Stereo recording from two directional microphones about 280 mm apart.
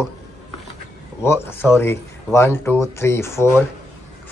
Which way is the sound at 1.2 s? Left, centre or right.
Centre.